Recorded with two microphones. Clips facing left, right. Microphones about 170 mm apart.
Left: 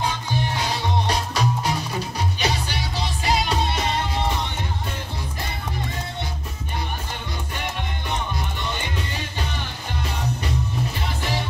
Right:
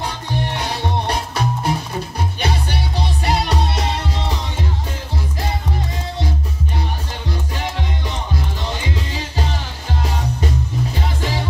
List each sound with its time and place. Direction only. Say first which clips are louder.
1.0 s music: right 2 dB; 55° right (ahead or behind)